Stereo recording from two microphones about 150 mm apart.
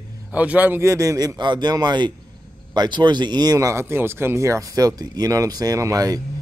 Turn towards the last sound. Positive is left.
turn(degrees=-25)  # may be behind; listen again after turning